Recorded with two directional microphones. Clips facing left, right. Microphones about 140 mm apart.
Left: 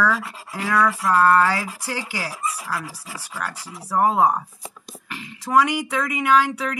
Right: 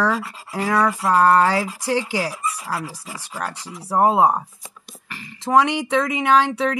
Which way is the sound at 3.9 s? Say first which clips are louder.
Right 2 dB; 35° right (ahead or behind).